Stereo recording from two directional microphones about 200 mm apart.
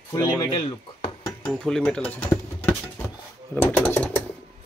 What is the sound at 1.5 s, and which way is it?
Speech, 5° left (ahead or behind).